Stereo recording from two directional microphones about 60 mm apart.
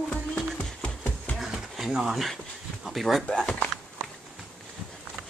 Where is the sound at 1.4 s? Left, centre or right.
Centre.